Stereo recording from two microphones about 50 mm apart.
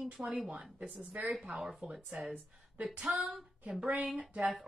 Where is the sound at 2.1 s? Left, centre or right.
Right.